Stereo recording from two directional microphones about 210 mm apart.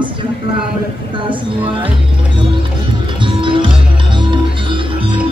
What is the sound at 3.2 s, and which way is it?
Music, 25° right (ahead or behind).